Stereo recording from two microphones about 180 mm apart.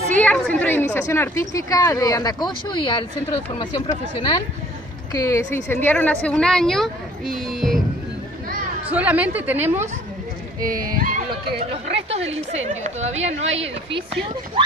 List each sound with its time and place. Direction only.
0.1 s a woman's voice: 5° left (ahead or behind); by 3.9 s 25° left (ahead or behind)
5.1 s a woman's voice: 15° left (ahead or behind)
8.9 s a woman's voice: 10° right (ahead or behind)
10.6 s speech: 50° right (ahead or behind)
11.9 s a woman's voice: 35° right (ahead or behind)